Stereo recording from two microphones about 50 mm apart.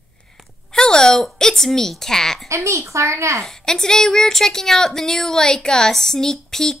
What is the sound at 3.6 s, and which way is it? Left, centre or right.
A woman's voice, centre.